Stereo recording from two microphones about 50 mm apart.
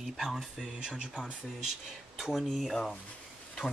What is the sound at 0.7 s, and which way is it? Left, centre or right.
Speech, centre.